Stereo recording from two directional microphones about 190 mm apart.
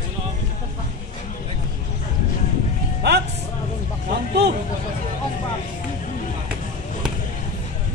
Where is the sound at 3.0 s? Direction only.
60° right (ahead or behind).